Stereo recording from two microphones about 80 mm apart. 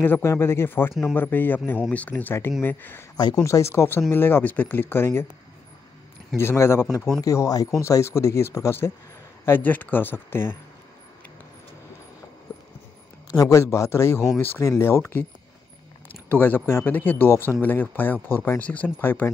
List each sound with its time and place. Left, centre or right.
0.0 s speech: left
3.4 s speech: left
6.3 s speech: left
7.2 s speech: left
9.4 s speech: left
13.3 s speech: left
16.3 s speech: left